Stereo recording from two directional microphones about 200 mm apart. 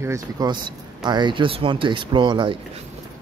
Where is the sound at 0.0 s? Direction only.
15° right (ahead or behind).